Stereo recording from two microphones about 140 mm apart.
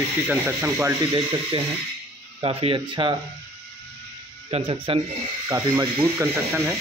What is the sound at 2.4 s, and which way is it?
Speech, 45° right (ahead or behind).